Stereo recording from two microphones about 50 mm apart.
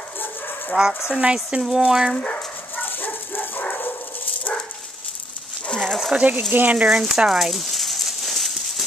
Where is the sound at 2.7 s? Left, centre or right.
Left.